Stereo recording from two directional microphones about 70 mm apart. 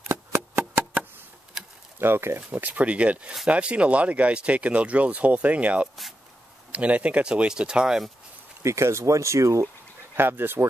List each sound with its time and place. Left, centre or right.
0.1 s a sound: right
2.0 s speech: right
2.5 s speech: right
8.6 s speech: right
10.1 s speech: right